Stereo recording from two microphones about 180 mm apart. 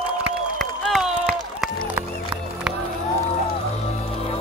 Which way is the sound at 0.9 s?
Centre (ahead or behind).